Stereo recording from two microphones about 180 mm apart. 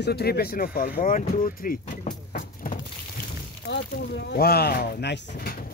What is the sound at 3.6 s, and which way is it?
Speech, 65° left (ahead or behind).